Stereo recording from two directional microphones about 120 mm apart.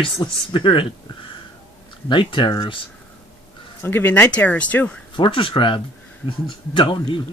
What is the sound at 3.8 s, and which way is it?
Speech, 15° left (ahead or behind).